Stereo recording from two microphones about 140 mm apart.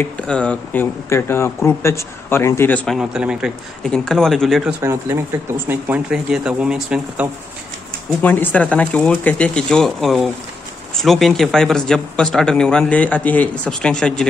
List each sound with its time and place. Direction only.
0.0 s speech: 10° left (ahead or behind)
1.0 s speech: 20° left (ahead or behind)
3.0 s speech: 5° right (ahead or behind)
4.6 s speech: 20° right (ahead or behind)
8.2 s speech: 10° left (ahead or behind)